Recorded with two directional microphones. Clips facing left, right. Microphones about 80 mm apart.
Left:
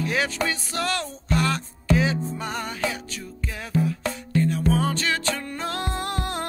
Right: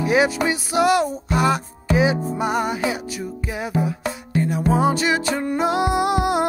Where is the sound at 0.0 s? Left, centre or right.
Centre.